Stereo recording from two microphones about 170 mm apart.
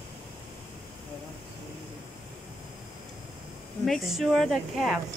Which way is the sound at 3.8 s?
Centre (ahead or behind).